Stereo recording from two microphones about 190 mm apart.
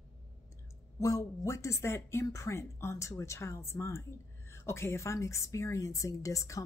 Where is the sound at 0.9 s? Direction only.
15° left (ahead or behind).